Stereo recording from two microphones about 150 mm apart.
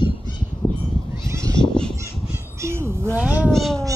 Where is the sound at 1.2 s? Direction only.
20° right (ahead or behind).